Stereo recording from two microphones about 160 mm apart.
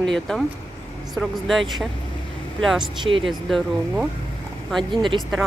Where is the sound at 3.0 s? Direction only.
35° right (ahead or behind).